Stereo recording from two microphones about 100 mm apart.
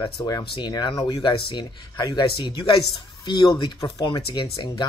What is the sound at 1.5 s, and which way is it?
Speech, 45° left (ahead or behind).